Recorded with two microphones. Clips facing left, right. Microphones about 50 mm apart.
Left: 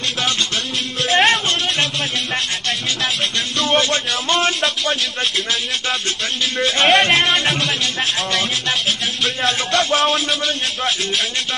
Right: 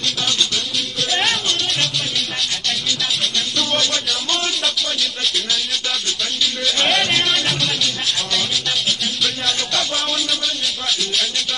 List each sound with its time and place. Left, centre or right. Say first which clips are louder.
1.1 s music: left 6 dB; left
3.7 s music: left 6 dB; left
6.4 s speech: left 4 dB; left
7.2 s music: left 3 dB; left
8.0 s a man's voice: left 2 dB; left
9.4 s music: left 4 dB; left
9.9 s a man's voice: left 5 dB; left